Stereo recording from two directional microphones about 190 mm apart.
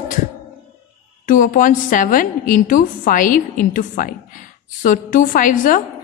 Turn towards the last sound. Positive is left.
turn(degrees=45)  # may be behind; listen again after turning